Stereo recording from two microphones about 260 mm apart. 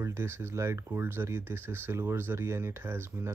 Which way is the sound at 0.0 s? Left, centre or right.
Centre.